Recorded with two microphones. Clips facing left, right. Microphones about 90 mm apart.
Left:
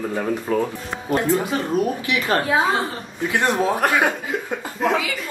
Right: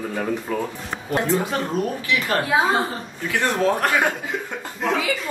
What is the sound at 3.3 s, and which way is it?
Speech, 20° left (ahead or behind).